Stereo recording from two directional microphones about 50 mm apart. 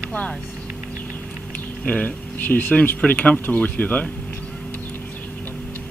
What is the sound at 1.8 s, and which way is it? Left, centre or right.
Speech, left.